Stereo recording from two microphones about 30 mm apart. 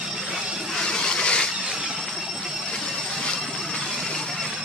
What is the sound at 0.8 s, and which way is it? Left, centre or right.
Vehicle, left.